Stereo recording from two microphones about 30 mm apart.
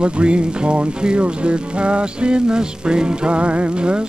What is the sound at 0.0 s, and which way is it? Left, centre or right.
Music, right.